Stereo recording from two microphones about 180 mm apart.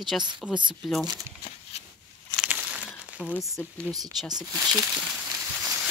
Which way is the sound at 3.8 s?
20° right (ahead or behind).